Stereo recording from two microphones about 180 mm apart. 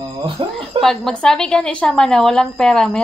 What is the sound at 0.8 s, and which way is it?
A woman's voice, centre (ahead or behind).